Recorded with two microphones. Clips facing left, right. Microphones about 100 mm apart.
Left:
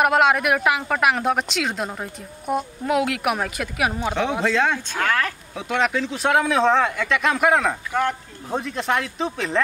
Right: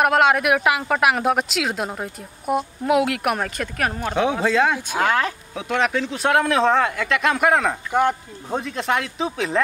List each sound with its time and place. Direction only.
0.0 s speech: centre (ahead or behind)
4.1 s speech: 5° right (ahead or behind)
5.5 s speech: centre (ahead or behind)
7.9 s speech: 15° right (ahead or behind)
8.5 s speech: centre (ahead or behind)